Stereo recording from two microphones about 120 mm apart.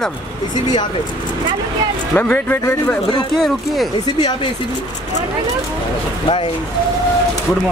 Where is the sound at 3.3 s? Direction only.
Centre (ahead or behind).